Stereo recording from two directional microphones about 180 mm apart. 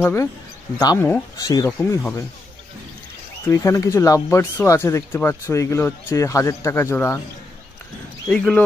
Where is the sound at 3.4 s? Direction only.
15° left (ahead or behind).